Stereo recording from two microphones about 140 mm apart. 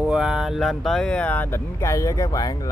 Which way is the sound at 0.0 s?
5° right (ahead or behind).